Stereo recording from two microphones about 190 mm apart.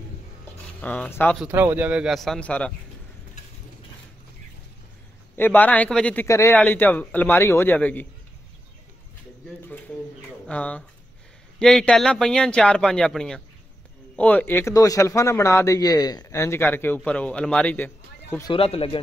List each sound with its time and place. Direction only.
0.7 s speech: 5° left (ahead or behind)
1.4 s speech: 10° right (ahead or behind); by 2.7 s 5° left (ahead or behind)
5.3 s speech: 10° left (ahead or behind)
10.4 s speech: 5° left (ahead or behind)
18.5 s speech: 30° left (ahead or behind)